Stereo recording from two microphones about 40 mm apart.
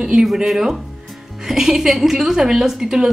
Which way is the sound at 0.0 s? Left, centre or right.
Centre.